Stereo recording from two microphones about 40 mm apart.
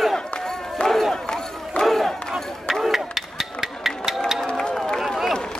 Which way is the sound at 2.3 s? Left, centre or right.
Centre.